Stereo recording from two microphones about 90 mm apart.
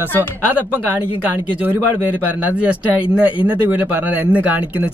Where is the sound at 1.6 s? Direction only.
20° right (ahead or behind).